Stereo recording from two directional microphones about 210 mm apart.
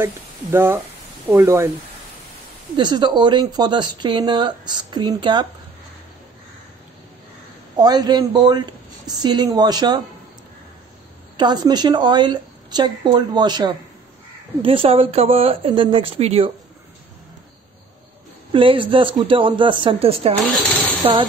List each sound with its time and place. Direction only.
0.0 s speech: 10° right (ahead or behind)
2.7 s speech: 20° right (ahead or behind)
7.7 s speech: 20° right (ahead or behind)
11.3 s speech: 20° right (ahead or behind)
18.5 s speech: 25° right (ahead or behind)